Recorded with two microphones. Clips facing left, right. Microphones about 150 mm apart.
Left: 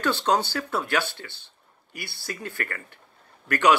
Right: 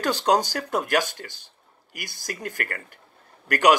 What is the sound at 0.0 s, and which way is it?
Speech, 40° right (ahead or behind).